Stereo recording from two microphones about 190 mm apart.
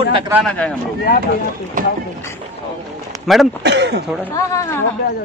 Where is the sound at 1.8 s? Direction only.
45° right (ahead or behind).